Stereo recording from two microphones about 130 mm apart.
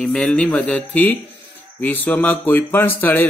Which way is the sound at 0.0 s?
5° left (ahead or behind).